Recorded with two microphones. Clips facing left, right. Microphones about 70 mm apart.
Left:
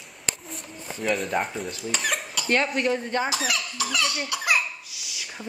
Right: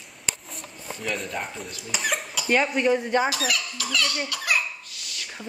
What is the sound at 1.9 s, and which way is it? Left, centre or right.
Speech, centre.